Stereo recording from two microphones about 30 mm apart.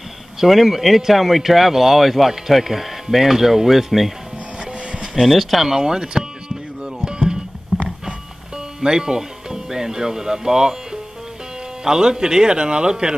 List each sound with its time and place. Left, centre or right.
0.5 s speech: centre
5.2 s speech: centre
5.7 s speech: centre
7.1 s music: right
7.7 s a sound: centre
8.8 s speech: right
11.8 s speech: right